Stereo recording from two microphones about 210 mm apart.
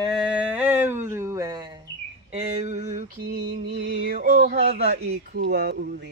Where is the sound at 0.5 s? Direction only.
10° right (ahead or behind).